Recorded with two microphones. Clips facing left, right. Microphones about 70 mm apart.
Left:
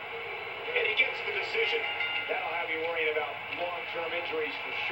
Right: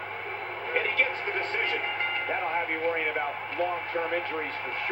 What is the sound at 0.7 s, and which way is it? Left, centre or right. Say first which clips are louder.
Speech: right 2 dB; right.